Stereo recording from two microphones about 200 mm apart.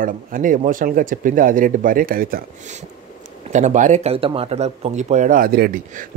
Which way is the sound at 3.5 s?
35° right (ahead or behind).